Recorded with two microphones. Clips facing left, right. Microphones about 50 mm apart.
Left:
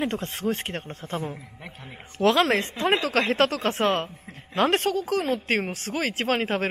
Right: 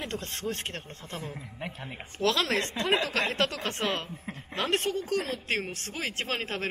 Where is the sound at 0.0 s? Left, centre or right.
Left.